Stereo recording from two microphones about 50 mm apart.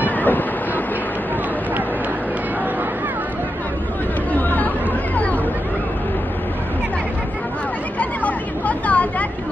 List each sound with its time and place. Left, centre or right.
0.0 s vehicle: left
4.3 s chatter: left
8.0 s a sound: left